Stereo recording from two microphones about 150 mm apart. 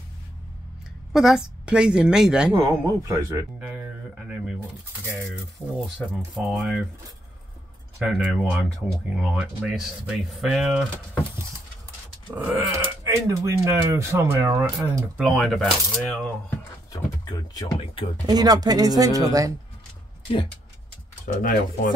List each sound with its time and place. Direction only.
1.1 s speech: 5° right (ahead or behind)
2.5 s speech: 25° right (ahead or behind)
3.5 s grunt: 10° right (ahead or behind)
5.9 s speech: 5° right (ahead or behind)
8.0 s speech: 5° right (ahead or behind)
12.4 s grunt: 10° right (ahead or behind)
13.0 s speech: 20° right (ahead or behind)
15.1 s speech: centre (ahead or behind)
16.9 s a sound: 25° left (ahead or behind)
18.2 s speech: 25° right (ahead or behind)
21.4 s speech: 65° left (ahead or behind)